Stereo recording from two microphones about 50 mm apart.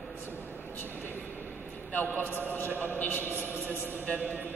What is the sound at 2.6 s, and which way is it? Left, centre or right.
Speech, right.